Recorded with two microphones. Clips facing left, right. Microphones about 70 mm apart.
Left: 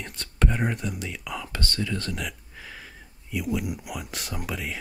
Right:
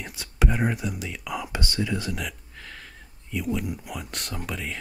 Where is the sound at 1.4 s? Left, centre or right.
Centre.